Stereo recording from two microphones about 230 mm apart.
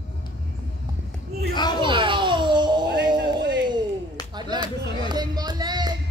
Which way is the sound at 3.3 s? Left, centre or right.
Right.